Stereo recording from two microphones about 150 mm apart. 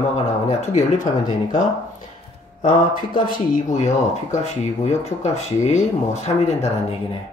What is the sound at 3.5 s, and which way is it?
Speech, 50° left (ahead or behind).